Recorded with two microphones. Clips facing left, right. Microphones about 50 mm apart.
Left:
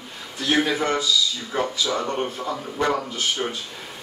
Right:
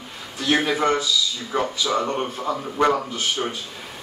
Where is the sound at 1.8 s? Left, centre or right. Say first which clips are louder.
Right 2 dB; centre.